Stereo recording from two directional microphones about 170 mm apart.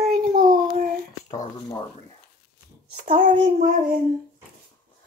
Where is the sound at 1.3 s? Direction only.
20° left (ahead or behind).